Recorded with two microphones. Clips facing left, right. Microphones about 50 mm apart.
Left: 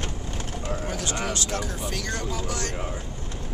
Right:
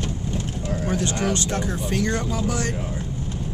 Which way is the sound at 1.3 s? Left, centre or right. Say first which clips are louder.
Right 4 dB; right.